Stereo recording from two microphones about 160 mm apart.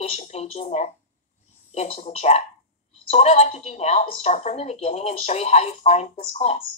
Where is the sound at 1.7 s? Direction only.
40° left (ahead or behind).